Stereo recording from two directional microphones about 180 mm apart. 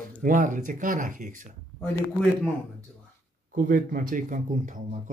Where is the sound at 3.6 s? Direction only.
50° right (ahead or behind).